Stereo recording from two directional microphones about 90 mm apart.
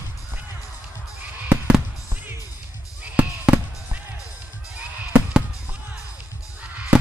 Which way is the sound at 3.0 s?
15° right (ahead or behind).